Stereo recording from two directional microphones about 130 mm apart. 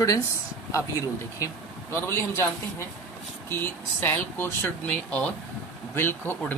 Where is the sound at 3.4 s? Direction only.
15° left (ahead or behind).